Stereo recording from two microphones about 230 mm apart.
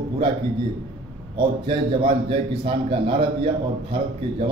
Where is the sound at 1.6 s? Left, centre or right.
Right.